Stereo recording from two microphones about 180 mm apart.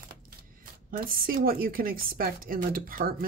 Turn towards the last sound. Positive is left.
turn(degrees=-50)  # may be behind; listen again after turning